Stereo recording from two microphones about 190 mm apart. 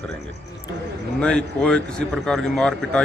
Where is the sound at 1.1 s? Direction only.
5° left (ahead or behind).